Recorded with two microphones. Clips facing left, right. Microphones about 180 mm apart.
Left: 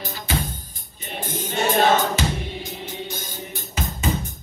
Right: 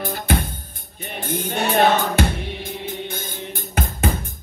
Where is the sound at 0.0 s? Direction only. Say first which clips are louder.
Right 5 dB; 55° right (ahead or behind).